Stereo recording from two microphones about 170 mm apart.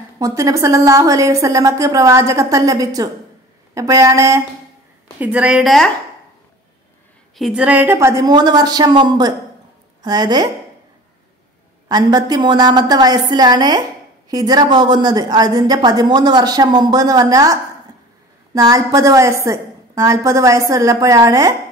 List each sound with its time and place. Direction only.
0.2 s a woman's voice: 20° right (ahead or behind); by 5.9 s centre (ahead or behind)
7.3 s a woman's voice: 5° right (ahead or behind); by 10.5 s 25° right (ahead or behind)
11.9 s a woman's voice: 25° right (ahead or behind)